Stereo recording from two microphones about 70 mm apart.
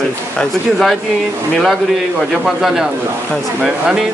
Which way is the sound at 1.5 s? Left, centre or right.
Centre.